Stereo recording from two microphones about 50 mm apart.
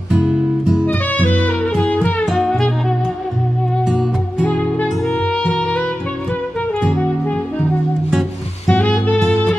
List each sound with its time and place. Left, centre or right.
0.1 s music: centre
1.1 s music: left
2.2 s music: centre
3.8 s music: centre
5.1 s music: left
8.6 s music: left